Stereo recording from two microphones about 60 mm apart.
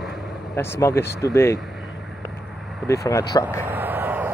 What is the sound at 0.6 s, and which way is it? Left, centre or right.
Speech, left.